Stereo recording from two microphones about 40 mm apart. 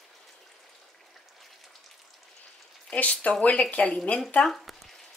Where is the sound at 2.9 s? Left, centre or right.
Left.